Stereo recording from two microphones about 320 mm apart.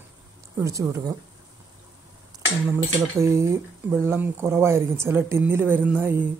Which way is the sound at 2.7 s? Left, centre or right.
Centre.